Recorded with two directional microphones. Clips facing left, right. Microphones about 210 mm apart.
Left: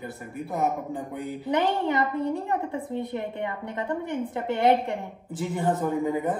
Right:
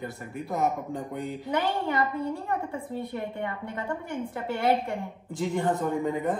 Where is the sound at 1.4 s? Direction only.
20° left (ahead or behind).